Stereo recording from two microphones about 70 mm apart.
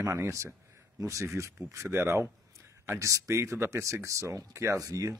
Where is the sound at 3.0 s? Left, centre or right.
Right.